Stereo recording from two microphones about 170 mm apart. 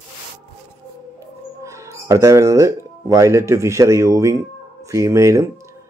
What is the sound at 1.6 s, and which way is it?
Speech, 15° right (ahead or behind).